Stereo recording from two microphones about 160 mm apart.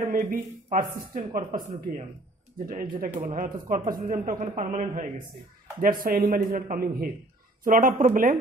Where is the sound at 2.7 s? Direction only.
60° right (ahead or behind); by 5.1 s 45° right (ahead or behind).